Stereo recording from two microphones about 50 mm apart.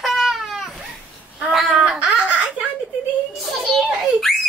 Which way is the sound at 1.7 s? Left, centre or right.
Centre.